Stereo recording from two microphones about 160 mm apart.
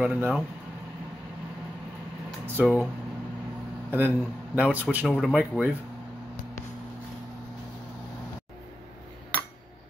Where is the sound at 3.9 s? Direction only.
10° right (ahead or behind).